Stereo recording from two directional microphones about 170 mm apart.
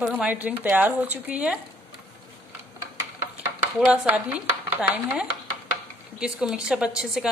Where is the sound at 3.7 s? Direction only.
5° right (ahead or behind).